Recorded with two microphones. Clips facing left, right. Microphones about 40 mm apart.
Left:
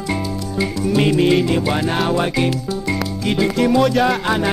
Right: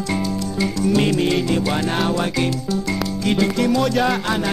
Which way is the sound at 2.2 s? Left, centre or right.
Centre.